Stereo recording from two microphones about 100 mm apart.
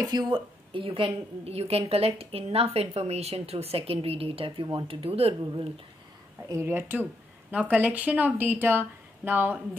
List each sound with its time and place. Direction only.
0.0 s a woman's voice: 45° right (ahead or behind); by 4.6 s 70° right (ahead or behind)
4.8 s speech: 80° right
6.5 s speech: 25° right (ahead or behind)